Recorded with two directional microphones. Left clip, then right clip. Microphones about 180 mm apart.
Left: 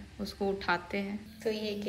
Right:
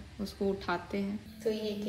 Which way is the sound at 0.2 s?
15° right (ahead or behind).